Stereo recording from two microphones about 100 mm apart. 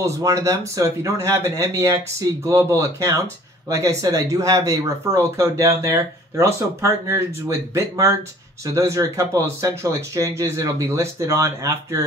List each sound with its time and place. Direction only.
0.0 s speech: 35° right (ahead or behind)